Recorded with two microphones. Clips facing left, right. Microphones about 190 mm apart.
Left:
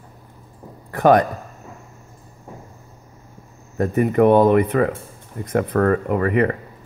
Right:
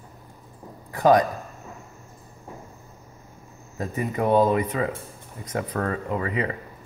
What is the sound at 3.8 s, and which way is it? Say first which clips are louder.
Speech: left 10 dB; 60° left (ahead or behind).